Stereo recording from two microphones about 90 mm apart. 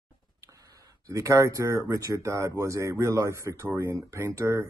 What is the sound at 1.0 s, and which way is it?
Speech, 35° right (ahead or behind).